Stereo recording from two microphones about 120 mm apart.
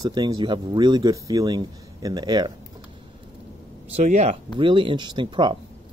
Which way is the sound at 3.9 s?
70° right (ahead or behind).